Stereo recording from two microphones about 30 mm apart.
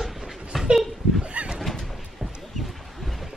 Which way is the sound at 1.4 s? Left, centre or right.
Right.